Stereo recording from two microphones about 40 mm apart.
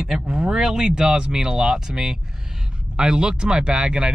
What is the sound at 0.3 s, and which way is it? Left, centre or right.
Speech, centre.